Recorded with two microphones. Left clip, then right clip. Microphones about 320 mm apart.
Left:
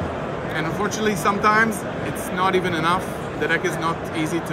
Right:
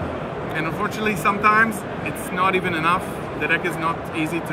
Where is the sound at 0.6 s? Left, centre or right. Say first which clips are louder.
Even; centre.